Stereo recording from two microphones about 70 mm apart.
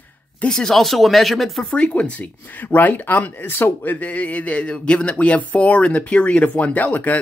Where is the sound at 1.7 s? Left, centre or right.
Centre.